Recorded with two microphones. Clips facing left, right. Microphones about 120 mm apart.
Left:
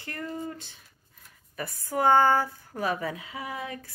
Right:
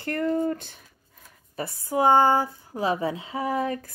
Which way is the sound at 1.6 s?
20° right (ahead or behind).